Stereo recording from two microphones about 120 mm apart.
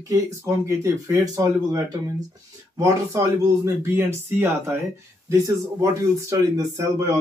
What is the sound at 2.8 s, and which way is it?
Speech, 25° right (ahead or behind).